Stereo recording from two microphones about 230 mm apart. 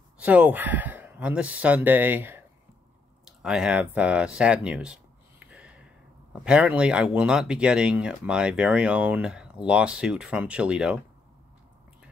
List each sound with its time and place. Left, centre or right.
0.2 s speech: centre
3.3 s a sound: centre
6.4 s speech: centre